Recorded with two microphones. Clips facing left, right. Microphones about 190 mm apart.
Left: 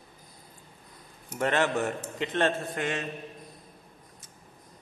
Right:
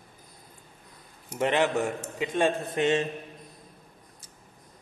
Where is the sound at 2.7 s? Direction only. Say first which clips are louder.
Right 7 dB; 25° right (ahead or behind).